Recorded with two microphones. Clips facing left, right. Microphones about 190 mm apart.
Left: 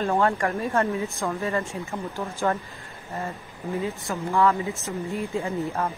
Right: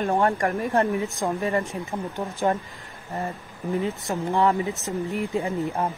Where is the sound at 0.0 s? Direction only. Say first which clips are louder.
Right 1 dB; 20° right (ahead or behind).